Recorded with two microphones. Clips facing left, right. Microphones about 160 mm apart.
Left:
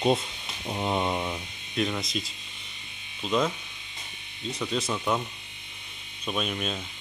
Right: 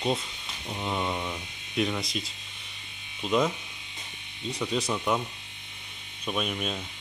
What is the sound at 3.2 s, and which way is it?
Speech, 10° right (ahead or behind).